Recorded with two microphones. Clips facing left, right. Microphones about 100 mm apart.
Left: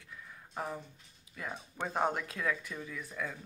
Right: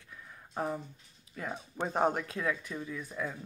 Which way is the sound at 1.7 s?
25° right (ahead or behind).